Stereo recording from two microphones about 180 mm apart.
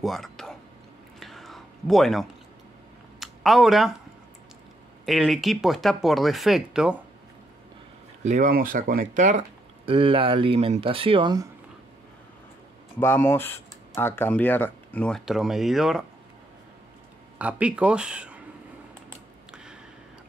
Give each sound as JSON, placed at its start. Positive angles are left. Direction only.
{"t": 0.0, "sound": "a sound", "side_deg": 0}
{"t": 1.2, "sound": "whispering", "side_deg": 0}
{"t": 3.2, "sound": "a sound", "side_deg": 0}
{"t": 5.0, "sound": "speech", "side_deg": 0}
{"t": 8.2, "sound": "speech", "side_deg": -40}
{"t": 9.8, "sound": "speech", "side_deg": -30}
{"t": 13.0, "sound": "speech", "side_deg": 15}
{"t": 17.4, "sound": "speech", "side_deg": -5}
{"t": 19.5, "sound": "a sound", "side_deg": -5}